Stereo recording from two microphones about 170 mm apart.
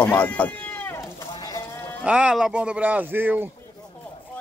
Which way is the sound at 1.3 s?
20° left (ahead or behind).